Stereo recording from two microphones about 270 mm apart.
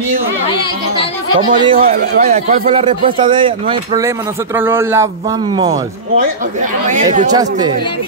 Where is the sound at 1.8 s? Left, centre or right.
Right; by 5.9 s centre.